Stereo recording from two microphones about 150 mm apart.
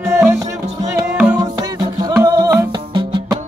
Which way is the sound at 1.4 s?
25° right (ahead or behind).